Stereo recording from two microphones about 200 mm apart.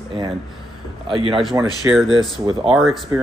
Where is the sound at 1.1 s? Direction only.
25° right (ahead or behind).